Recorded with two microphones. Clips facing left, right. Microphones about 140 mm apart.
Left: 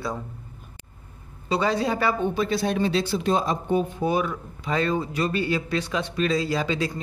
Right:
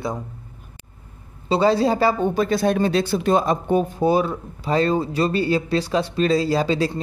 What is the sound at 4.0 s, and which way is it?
Speech, 30° right (ahead or behind).